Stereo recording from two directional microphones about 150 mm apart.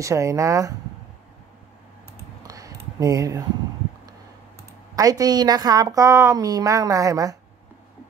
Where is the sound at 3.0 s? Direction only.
25° right (ahead or behind).